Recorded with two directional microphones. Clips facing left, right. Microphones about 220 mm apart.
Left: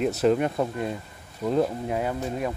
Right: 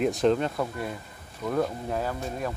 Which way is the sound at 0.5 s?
20° left (ahead or behind).